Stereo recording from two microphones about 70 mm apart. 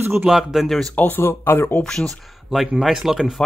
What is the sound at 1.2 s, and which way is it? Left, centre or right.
Speech, left.